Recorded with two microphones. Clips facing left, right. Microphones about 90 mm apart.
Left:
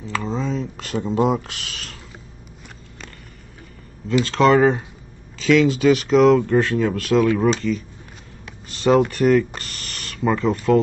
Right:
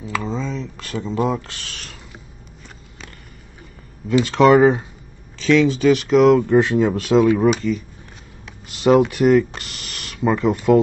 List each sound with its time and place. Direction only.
0.0 s a sound: 10° right (ahead or behind)
0.3 s a sound: 10° left (ahead or behind)
1.4 s speech: centre (ahead or behind)
4.2 s speech: 10° right (ahead or behind)
5.4 s speech: centre (ahead or behind)
6.4 s speech: 15° right (ahead or behind)
7.3 s speech: 5° right (ahead or behind)
9.6 s a sound: 10° right (ahead or behind)
10.5 s speech: 10° right (ahead or behind)